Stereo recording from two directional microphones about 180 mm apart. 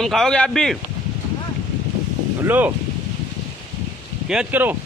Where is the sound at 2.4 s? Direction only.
10° right (ahead or behind).